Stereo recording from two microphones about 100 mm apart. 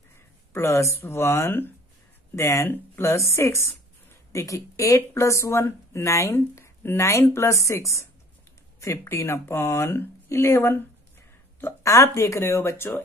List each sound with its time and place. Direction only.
0.5 s speech: 25° left (ahead or behind)